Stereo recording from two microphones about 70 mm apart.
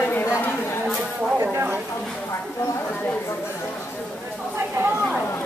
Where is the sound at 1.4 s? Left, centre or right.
Right.